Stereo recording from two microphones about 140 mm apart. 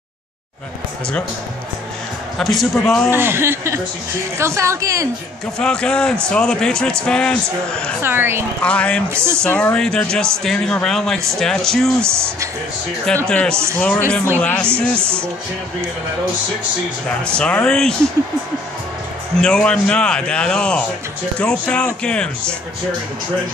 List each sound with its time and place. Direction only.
2.3 s a man's voice: centre (ahead or behind)
3.1 s a woman's voice: 15° right (ahead or behind)
5.6 s a man's voice: 5° left (ahead or behind)
8.0 s speech: 15° right (ahead or behind)
8.6 s speech: 10° left (ahead or behind)
9.1 s speech: 20° right (ahead or behind)
9.4 s a man's voice: 10° left (ahead or behind)
12.0 s a woman's voice: 20° right (ahead or behind)
13.3 s speech: 10° left (ahead or behind)
15.0 s speech: 15° right (ahead or behind)
17.2 s speech: 10° left (ahead or behind)
19.3 s a man's voice: 5° left (ahead or behind)